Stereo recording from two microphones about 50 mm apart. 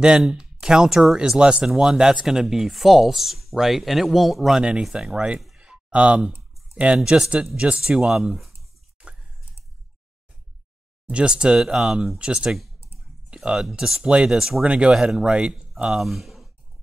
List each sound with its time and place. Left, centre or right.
0.3 s speech: centre
5.6 s a sound: right
7.1 s speech: centre
11.1 s speech: right
13.3 s a sound: centre
13.7 s speech: centre